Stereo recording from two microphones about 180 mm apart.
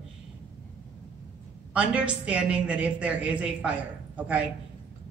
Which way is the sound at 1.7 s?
5° right (ahead or behind).